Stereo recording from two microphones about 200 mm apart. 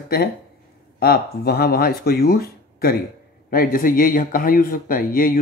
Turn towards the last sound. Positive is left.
turn(degrees=45)  # may be behind; listen again after turning